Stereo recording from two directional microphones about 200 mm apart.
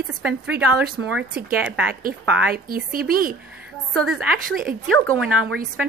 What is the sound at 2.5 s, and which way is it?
Speech, 45° right (ahead or behind).